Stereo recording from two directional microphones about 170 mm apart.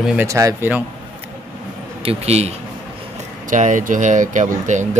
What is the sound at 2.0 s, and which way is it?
Speech, 35° right (ahead or behind).